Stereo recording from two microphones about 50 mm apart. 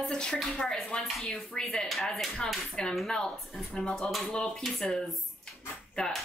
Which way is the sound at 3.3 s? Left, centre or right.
Centre.